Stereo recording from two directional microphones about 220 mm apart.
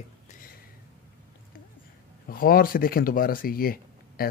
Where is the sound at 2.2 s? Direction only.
40° left (ahead or behind).